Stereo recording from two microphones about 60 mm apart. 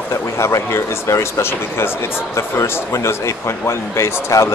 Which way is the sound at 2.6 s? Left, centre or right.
Left.